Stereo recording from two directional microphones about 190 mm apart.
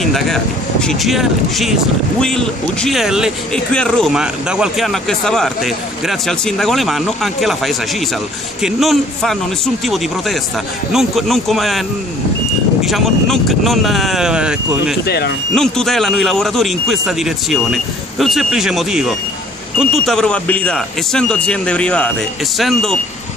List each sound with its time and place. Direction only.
0.0 s speech: centre (ahead or behind)
10.9 s speech: centre (ahead or behind)
12.8 s speech: centre (ahead or behind)
15.0 s speech: 60° left (ahead or behind)
15.5 s speech: centre (ahead or behind)